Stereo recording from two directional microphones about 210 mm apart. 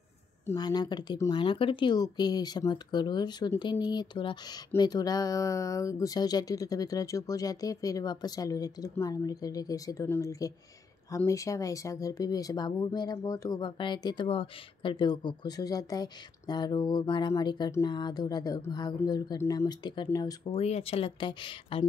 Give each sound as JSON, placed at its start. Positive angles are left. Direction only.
{"t": 0.5, "sound": "speech", "side_deg": 20}
{"t": 20.5, "sound": "speech", "side_deg": 30}